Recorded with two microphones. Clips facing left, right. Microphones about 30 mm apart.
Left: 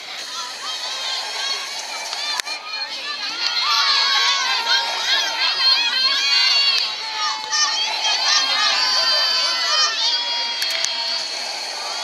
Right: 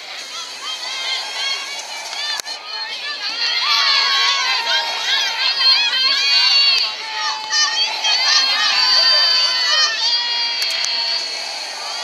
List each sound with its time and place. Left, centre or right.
3.7 s crowd: centre
6.1 s crowd: centre
7.2 s a sound: centre
8.1 s crowd: centre
10.9 s music: centre